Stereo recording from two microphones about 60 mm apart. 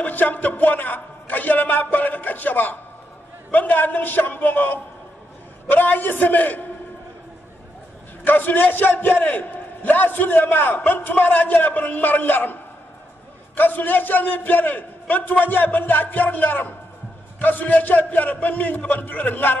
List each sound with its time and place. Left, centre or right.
0.0 s a man's voice: left
8.2 s a man's voice: left
13.6 s a man's voice: left